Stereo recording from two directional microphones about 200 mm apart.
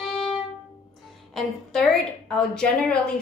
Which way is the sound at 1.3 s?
Centre (ahead or behind).